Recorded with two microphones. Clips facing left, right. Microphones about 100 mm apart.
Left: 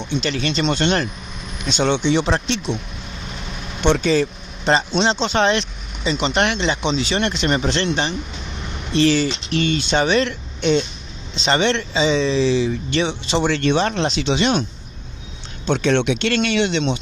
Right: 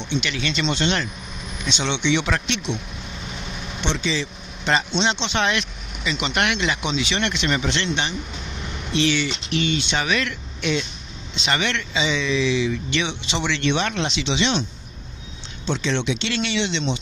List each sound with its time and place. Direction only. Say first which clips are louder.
0.0 s speech: left 3 dB; 40° left (ahead or behind)
3.8 s speech: left 9 dB; 50° left (ahead or behind)
4.6 s speech: left 4 dB; 35° left (ahead or behind); by 17.0 s 50° left (ahead or behind)